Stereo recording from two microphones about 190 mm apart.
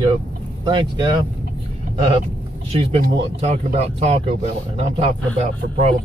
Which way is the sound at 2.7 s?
30° right (ahead or behind).